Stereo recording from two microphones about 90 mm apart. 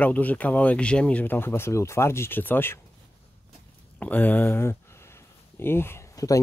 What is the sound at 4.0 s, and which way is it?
Speech, 20° left (ahead or behind).